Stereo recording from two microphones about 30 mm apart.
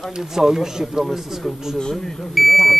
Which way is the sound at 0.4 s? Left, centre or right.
Centre.